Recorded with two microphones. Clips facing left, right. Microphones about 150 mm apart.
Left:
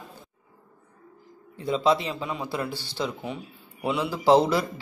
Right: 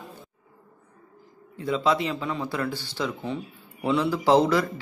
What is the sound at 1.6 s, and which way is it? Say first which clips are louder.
A man's voice: left 1 dB; 25° left (ahead or behind).